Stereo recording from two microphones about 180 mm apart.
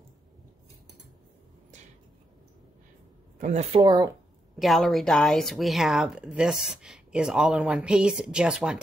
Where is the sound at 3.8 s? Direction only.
20° right (ahead or behind).